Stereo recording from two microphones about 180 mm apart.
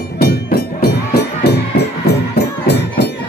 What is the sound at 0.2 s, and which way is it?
Music, 60° left (ahead or behind).